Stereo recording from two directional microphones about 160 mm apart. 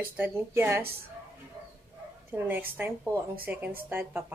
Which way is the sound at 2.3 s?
10° right (ahead or behind).